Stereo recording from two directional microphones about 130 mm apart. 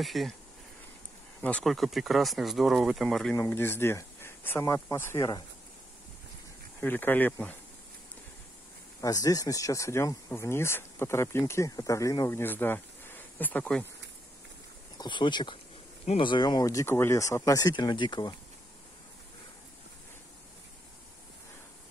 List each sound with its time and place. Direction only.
0.0 s speech: centre (ahead or behind)
1.4 s speech: 5° left (ahead or behind)
3.4 s speech: 15° left (ahead or behind)
6.8 s speech: 15° left (ahead or behind)
9.0 s speech: 25° left (ahead or behind); by 13.8 s 10° left (ahead or behind)
15.0 s speech: 35° left (ahead or behind)